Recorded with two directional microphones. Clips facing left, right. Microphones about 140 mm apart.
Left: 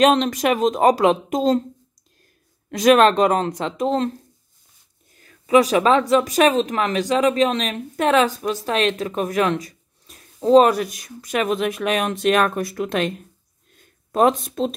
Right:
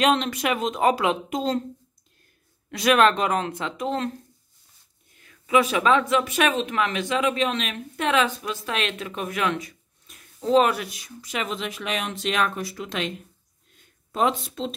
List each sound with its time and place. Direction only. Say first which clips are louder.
0.0 s speech: left 5 dB; 40° left (ahead or behind)
2.7 s speech: left 5 dB; 40° left (ahead or behind)
5.1 s speech: left 5 dB; 35° left (ahead or behind); by 13.1 s 55° left (ahead or behind)
13.7 s a sound: left 6 dB; 45° left (ahead or behind)